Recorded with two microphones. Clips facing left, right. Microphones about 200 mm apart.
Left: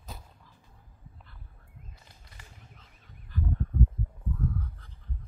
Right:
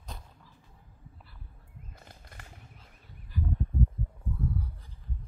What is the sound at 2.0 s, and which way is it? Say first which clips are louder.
Wild animals: right 5 dB; 55° right (ahead or behind).